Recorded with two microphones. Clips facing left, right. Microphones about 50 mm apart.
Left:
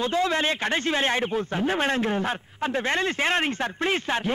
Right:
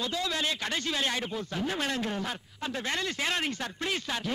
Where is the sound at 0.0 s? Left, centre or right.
Left.